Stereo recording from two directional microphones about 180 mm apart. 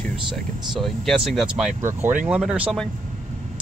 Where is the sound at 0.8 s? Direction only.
Centre (ahead or behind).